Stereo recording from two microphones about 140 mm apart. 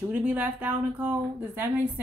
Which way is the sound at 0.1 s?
10° right (ahead or behind).